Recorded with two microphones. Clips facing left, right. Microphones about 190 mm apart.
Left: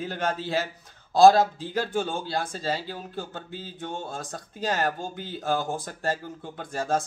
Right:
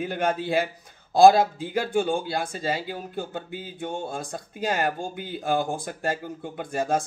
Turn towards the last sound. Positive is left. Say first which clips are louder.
# right 2 dB
turn(degrees=-15)  # may be behind; listen again after turning